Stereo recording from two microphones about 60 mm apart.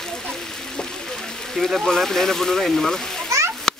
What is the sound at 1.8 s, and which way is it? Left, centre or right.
Speech, centre.